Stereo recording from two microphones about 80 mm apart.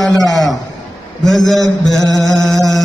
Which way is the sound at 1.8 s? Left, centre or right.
Centre.